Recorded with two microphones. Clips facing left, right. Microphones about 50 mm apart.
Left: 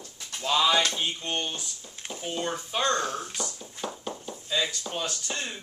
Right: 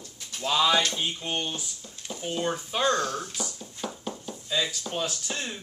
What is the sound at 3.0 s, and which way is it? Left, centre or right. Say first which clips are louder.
Speech: right 1 dB; left.